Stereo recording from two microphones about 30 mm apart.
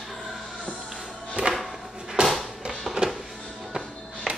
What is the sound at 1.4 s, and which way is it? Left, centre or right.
Music, right.